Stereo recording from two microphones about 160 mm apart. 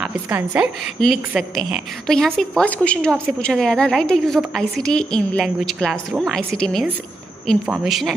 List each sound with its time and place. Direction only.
0.3 s a woman's voice: 10° right (ahead or behind)
1.0 s a woman's voice: centre (ahead or behind)